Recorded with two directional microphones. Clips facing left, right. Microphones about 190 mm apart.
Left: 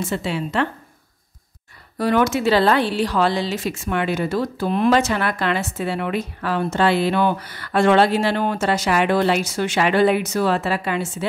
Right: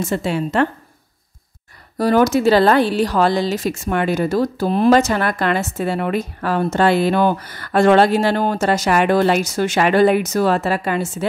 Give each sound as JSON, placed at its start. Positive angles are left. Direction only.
{"t": 0.0, "sound": "a woman's voice", "side_deg": -45}
{"t": 2.0, "sound": "a woman's voice", "side_deg": -40}